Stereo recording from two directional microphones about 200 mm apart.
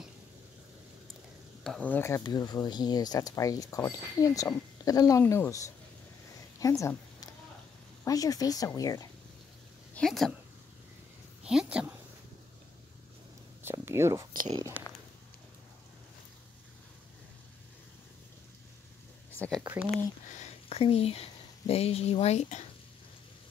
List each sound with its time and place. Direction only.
1.6 s a woman's voice: 5° left (ahead or behind)
9.9 s speech: centre (ahead or behind)
11.4 s a woman's voice: 5° right (ahead or behind)
13.6 s a sound: 10° right (ahead or behind)
19.3 s speech: 5° left (ahead or behind)
19.6 s speech: 10° right (ahead or behind)
20.3 s speech: 30° left (ahead or behind)